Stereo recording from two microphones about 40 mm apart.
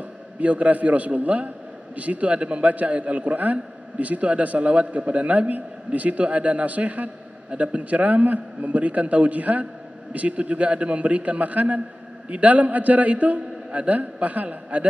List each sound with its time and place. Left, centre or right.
0.4 s a man's voice: right